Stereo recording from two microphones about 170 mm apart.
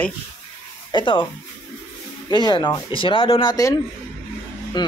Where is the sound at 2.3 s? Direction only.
25° left (ahead or behind).